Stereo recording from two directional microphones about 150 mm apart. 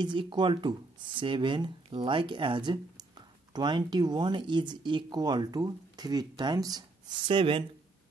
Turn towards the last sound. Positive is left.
turn(degrees=-35)  # may be behind; listen again after turning